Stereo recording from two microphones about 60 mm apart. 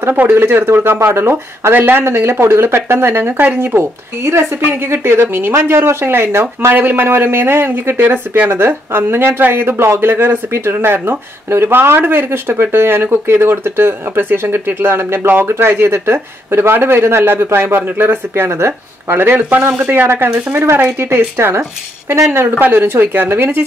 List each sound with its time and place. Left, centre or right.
0.3 s speech: right